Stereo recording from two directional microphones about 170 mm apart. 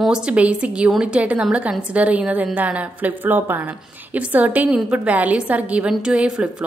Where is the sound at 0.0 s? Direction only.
5° right (ahead or behind).